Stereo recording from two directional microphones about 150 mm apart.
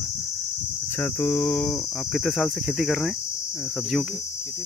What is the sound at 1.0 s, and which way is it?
Cricket, 15° left (ahead or behind).